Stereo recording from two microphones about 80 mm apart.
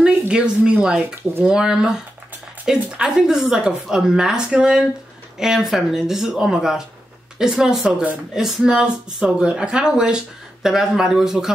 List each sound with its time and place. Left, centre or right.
0.3 s speech: centre